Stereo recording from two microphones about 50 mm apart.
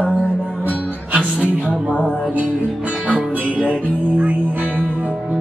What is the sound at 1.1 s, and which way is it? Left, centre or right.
Music, right.